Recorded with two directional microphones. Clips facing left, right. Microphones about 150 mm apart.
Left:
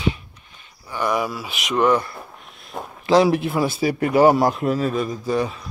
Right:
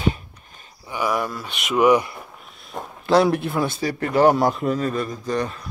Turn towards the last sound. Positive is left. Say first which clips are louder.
# left 2 dB
turn(degrees=0)  # may be behind; listen again after turning